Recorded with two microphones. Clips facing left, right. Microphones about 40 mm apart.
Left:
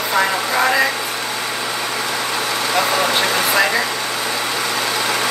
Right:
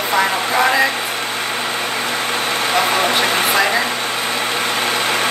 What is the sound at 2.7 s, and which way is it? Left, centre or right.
Speech, right.